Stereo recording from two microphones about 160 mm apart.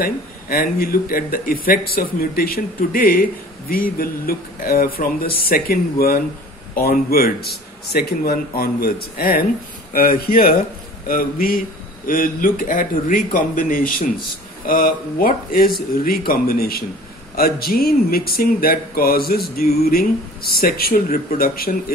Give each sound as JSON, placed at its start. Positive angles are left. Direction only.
{"t": 0.0, "sound": "a man's voice", "side_deg": 65}